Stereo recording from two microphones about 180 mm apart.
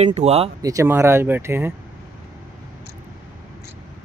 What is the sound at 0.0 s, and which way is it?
Speech, 40° right (ahead or behind).